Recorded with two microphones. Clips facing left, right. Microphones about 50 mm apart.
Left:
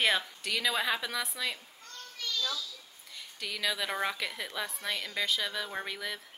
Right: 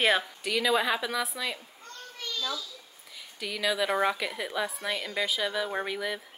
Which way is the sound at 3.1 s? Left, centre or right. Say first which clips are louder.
Right 3 dB; centre.